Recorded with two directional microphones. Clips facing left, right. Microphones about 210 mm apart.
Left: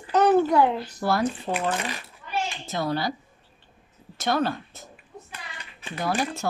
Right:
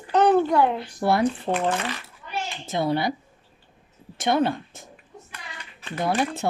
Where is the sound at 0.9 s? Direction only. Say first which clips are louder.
Right 3 dB; 25° right (ahead or behind).